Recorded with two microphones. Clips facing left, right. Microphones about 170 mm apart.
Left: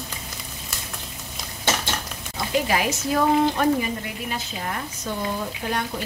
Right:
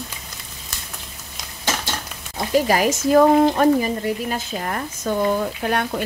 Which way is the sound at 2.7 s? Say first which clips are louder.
Right 7 dB; 45° right (ahead or behind).